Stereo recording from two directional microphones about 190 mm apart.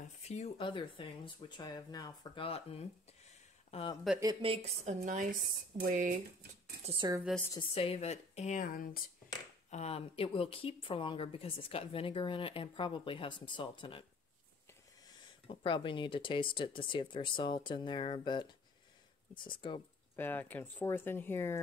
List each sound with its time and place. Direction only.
0.3 s speech: 30° left (ahead or behind)
4.2 s a woman's voice: 25° right (ahead or behind); by 6.1 s 45° right (ahead or behind)
6.9 s speech: 25° right (ahead or behind)
7.5 s speech: 30° left (ahead or behind); by 9.1 s 50° left (ahead or behind)
9.7 s speech: 35° left (ahead or behind)
15.6 s speech: 25° left (ahead or behind)
20.2 s speech: 10° left (ahead or behind)